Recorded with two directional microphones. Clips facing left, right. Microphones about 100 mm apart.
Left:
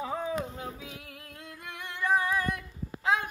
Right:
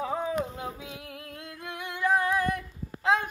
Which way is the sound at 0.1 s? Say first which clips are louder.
Right 3 dB; 20° right (ahead or behind).